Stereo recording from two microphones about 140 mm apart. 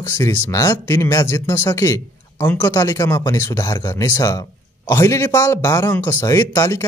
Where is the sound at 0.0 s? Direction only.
25° left (ahead or behind).